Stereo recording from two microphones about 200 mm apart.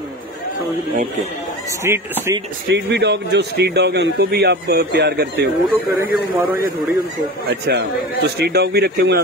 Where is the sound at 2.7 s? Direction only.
55° right (ahead or behind).